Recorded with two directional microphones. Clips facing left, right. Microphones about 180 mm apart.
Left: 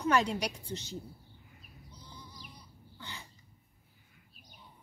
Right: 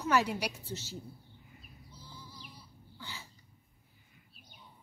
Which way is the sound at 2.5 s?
5° right (ahead or behind).